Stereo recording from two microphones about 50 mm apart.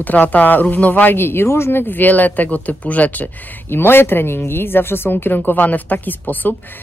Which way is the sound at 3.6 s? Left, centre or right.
Left.